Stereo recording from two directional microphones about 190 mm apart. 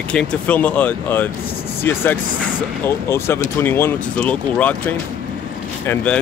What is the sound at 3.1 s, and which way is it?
Speech, 15° left (ahead or behind).